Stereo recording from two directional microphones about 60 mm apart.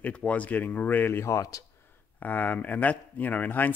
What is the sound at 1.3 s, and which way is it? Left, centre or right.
Speech, left.